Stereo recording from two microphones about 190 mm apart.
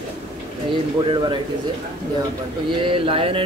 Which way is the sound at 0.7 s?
25° right (ahead or behind).